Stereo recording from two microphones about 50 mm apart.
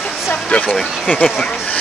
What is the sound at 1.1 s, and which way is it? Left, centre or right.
Speech, left.